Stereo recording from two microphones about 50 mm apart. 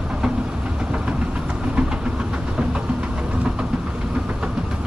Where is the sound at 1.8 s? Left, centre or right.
Centre.